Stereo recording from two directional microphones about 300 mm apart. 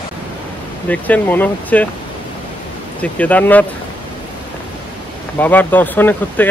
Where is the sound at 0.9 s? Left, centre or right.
Centre.